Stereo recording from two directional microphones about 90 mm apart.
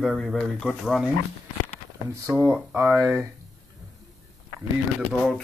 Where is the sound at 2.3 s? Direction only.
20° right (ahead or behind).